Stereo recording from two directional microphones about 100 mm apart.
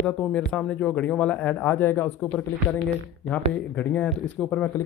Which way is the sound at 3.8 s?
20° left (ahead or behind).